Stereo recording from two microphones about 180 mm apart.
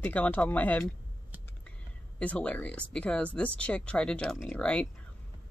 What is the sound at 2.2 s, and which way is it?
Speech, 5° left (ahead or behind).